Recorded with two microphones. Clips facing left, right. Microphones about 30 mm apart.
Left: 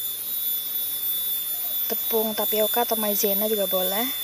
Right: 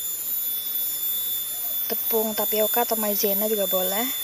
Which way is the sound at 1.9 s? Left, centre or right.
Centre.